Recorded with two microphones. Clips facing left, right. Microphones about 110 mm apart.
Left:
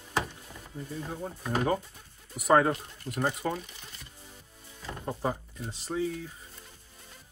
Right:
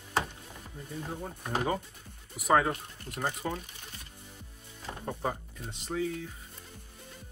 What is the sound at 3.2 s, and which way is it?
Speech, 20° left (ahead or behind).